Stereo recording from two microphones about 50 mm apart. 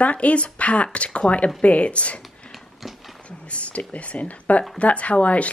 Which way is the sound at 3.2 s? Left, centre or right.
Left.